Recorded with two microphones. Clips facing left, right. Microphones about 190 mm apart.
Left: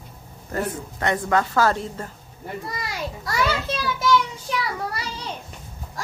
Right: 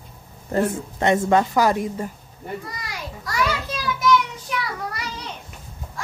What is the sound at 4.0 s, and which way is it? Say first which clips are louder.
Child singing: right 2 dB; 30° left (ahead or behind).